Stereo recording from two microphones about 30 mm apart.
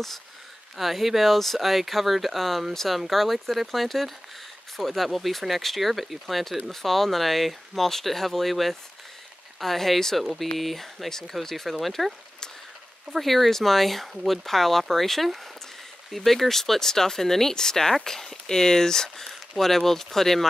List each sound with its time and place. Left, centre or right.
0.7 s speech: centre